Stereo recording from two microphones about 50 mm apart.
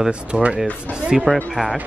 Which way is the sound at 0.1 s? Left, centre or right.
Right.